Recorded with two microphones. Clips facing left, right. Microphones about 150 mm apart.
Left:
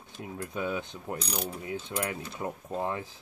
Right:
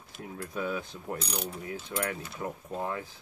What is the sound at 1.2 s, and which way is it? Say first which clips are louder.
Mechanisms: left 3 dB; centre (ahead or behind).